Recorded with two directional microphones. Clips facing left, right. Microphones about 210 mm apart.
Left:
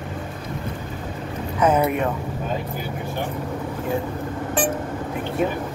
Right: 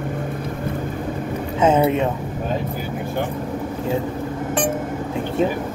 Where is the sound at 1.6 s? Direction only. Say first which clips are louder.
Right 3 dB; 25° right (ahead or behind).